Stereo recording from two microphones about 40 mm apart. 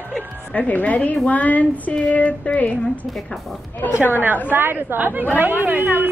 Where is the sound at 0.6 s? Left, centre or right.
Left.